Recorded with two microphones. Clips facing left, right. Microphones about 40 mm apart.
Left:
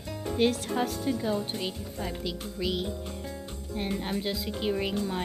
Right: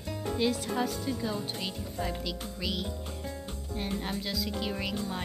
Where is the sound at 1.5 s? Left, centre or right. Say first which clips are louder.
Left 1 dB; centre.